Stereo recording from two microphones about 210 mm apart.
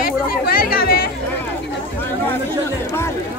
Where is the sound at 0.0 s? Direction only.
45° left (ahead or behind).